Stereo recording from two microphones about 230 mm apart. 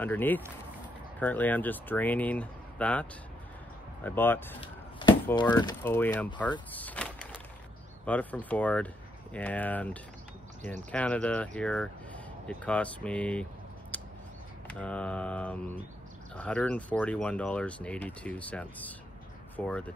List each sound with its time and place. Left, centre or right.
0.0 s speech: centre
4.6 s a sound: left
5.8 s speech: centre
6.7 s power windows: centre
8.0 s speech: centre
10.6 s speech: right
10.9 s speech: centre
13.9 s a sound: centre
14.7 s speech: centre